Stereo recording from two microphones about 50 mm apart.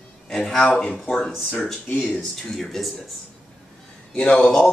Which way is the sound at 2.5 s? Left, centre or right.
Centre.